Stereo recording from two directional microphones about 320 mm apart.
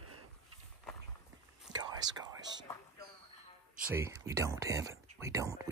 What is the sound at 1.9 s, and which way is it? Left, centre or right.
Speech, centre.